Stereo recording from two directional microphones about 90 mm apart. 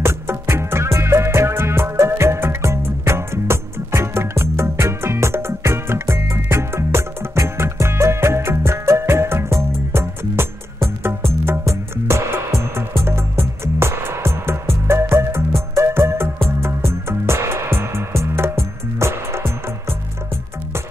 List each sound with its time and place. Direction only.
0.0 s music: 30° right (ahead or behind)